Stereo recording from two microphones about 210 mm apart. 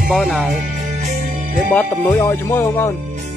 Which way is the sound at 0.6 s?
35° right (ahead or behind).